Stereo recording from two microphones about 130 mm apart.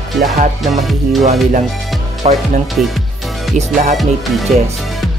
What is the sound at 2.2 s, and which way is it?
Speech, 50° right (ahead or behind).